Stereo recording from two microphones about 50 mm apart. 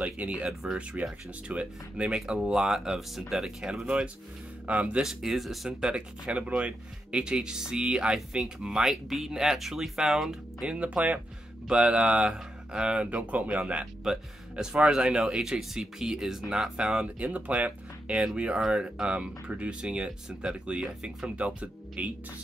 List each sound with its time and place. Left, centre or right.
0.0 s speech: right
0.5 s speech: centre
1.0 s speech: right
2.5 s speech: centre
4.6 s speech: right
5.0 s speech: centre
5.7 s speech: centre
8.5 s speech: centre
10.7 s speech: right
14.1 s speech: centre
17.0 s speech: right